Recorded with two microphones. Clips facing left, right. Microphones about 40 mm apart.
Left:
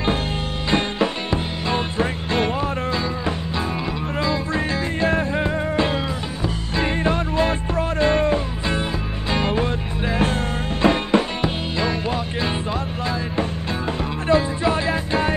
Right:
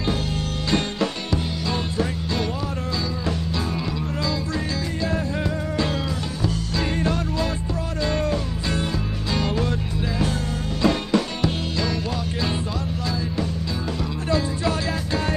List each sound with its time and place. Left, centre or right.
0.7 s music: left
5.0 s music: left
10.8 s music: left
14.3 s music: left